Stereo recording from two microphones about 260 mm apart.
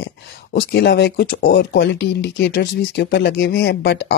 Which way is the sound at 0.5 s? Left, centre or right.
Left.